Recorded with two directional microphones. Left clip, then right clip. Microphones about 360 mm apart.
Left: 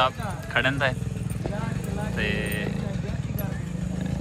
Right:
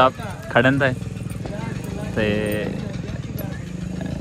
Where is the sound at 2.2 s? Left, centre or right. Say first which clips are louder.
Right 7 dB; centre.